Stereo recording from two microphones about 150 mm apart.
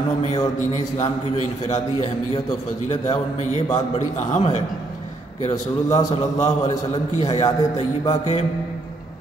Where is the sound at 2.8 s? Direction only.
50° left (ahead or behind).